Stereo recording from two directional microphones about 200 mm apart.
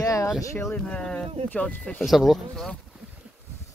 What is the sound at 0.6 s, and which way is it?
Speech, 5° left (ahead or behind).